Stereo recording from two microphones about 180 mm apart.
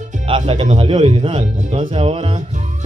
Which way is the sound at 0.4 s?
35° right (ahead or behind).